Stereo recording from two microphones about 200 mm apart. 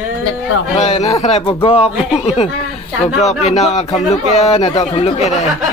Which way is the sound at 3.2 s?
35° left (ahead or behind).